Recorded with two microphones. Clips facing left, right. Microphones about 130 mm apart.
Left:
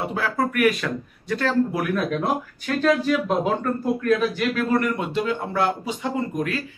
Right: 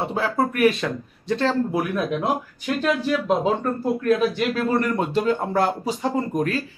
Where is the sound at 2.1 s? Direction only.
15° right (ahead or behind).